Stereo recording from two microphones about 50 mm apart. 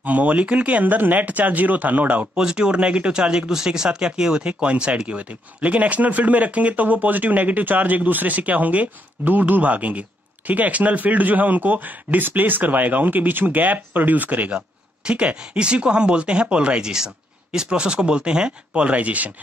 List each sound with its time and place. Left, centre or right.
0.0 s speech: right
2.3 s speech: centre